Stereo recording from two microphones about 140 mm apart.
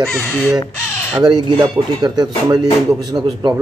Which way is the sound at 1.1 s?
30° right (ahead or behind).